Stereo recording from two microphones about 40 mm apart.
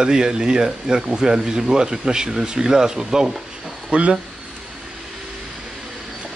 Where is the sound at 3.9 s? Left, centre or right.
Right.